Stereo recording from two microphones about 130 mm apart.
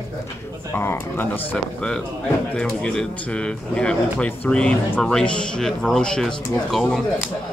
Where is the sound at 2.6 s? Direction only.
5° left (ahead or behind).